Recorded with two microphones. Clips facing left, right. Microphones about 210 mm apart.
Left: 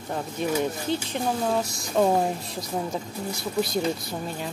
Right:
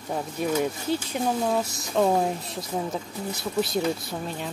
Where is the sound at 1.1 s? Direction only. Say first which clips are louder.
Right 1 dB; 5° right (ahead or behind).